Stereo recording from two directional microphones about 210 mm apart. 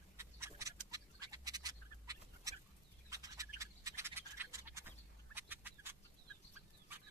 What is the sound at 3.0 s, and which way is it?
Scratch, 15° right (ahead or behind).